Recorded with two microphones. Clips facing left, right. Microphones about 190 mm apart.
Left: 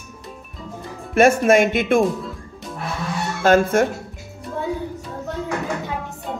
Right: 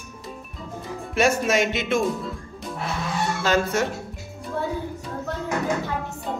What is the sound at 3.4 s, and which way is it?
Speech, 50° left (ahead or behind).